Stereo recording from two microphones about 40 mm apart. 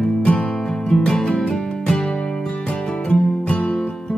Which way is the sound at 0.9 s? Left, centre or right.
Centre.